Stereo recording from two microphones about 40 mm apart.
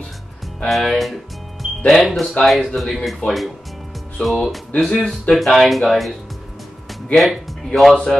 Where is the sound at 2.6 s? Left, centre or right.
Centre.